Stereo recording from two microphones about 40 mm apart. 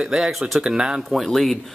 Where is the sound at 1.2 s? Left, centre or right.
Centre.